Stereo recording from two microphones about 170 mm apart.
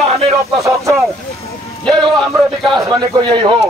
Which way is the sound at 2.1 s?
Centre (ahead or behind).